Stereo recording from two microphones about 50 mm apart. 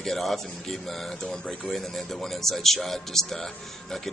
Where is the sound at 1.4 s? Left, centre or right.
Left.